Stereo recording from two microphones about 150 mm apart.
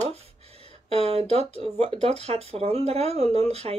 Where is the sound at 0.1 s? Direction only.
40° right (ahead or behind).